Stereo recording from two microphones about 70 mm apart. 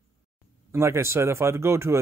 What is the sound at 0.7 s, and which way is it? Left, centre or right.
Speech, right.